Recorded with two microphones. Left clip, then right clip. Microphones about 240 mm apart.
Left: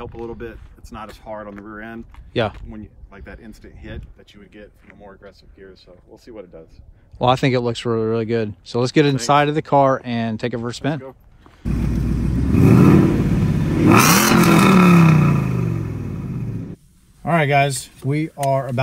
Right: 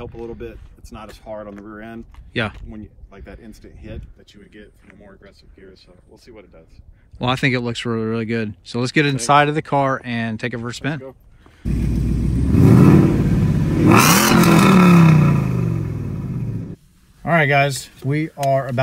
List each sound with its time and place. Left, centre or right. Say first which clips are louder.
0.0 s speech: left 1 dB; centre
5.0 s speech: left 5 dB; left
7.2 s speech: left 3 dB; centre
12.5 s vehicle: even; centre
17.7 s speech: even; centre